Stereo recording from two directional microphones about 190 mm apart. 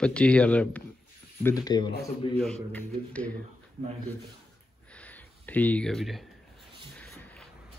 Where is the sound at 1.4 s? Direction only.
20° left (ahead or behind).